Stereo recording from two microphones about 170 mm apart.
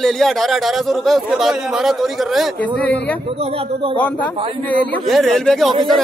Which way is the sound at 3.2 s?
35° right (ahead or behind).